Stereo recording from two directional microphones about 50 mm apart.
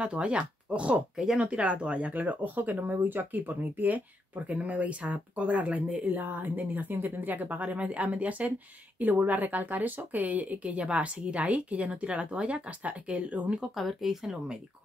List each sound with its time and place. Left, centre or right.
0.0 s speech: right
1.1 s speech: centre
1.4 s speech: right
13.7 s speech: centre